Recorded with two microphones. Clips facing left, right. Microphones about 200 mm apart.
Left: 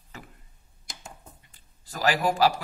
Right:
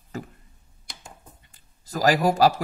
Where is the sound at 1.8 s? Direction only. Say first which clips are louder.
Right 5 dB; 40° right (ahead or behind).